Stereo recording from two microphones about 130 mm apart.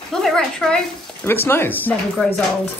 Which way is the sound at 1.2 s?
15° left (ahead or behind).